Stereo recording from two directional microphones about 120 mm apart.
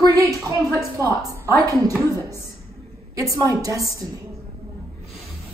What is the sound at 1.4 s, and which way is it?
Speech, 25° right (ahead or behind).